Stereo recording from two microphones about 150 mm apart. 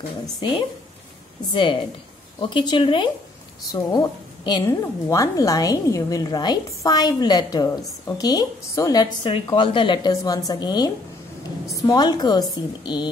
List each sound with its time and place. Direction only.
0.4 s a woman's voice: 35° left (ahead or behind)